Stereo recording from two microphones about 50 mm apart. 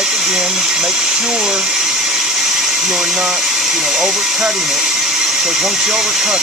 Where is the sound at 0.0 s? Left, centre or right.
Centre.